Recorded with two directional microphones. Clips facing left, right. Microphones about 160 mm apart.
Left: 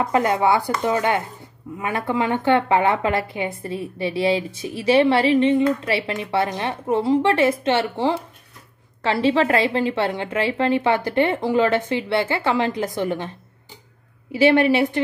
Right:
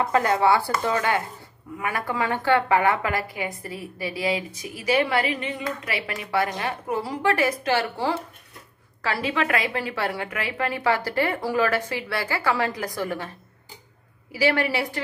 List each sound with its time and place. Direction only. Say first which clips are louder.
0.0 s a woman's voice: left 2 dB; 20° left (ahead or behind)
14.3 s a woman's voice: left 7 dB; 25° left (ahead or behind)